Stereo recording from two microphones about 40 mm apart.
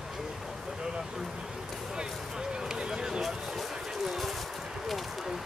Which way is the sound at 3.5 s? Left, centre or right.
Centre.